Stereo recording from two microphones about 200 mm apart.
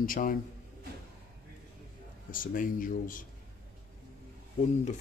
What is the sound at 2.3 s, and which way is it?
Speech, 45° left (ahead or behind).